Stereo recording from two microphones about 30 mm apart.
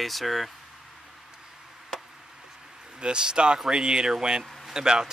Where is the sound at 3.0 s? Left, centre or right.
Right.